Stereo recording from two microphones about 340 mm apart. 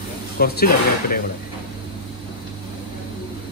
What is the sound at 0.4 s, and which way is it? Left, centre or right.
Speech, left.